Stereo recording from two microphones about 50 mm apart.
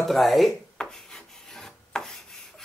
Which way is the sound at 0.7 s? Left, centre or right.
Centre.